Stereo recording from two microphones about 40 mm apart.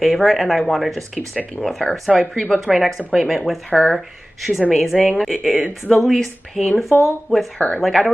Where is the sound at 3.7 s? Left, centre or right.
Centre.